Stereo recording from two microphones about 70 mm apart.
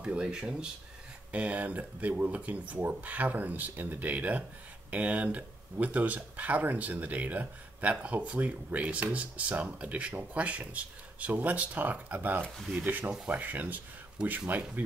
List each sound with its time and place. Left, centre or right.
0.0 s speech: centre
14.2 s speech: centre